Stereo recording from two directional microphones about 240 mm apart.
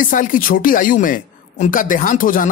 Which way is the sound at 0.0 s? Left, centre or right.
Left.